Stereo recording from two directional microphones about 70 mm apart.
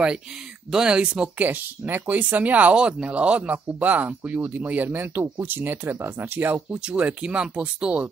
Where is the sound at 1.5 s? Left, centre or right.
Right.